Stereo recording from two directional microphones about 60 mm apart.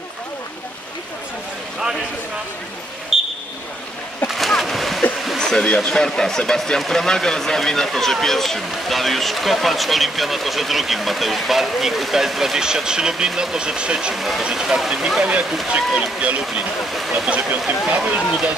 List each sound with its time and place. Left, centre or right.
3.1 s a sound: centre
4.3 s splash: centre
5.4 s a sound: centre
5.9 s speech: centre
14.1 s speech: centre
17.3 s speech: right